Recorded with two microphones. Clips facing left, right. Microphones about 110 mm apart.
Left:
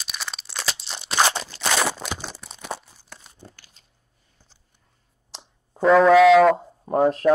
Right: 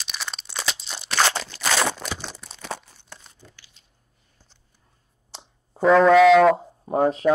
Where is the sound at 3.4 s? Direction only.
40° left (ahead or behind).